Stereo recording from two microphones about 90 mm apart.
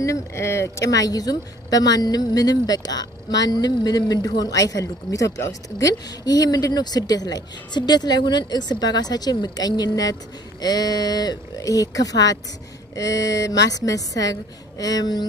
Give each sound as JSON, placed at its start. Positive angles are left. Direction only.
{"t": 0.0, "sound": "a woman's voice", "side_deg": 35}